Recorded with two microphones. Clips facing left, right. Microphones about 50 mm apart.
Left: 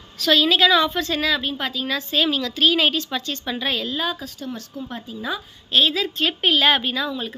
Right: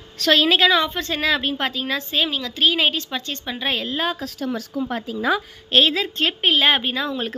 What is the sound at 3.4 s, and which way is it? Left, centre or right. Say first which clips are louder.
Speech: even; right.